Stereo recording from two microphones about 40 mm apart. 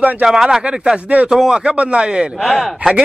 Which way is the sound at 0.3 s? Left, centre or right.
Centre.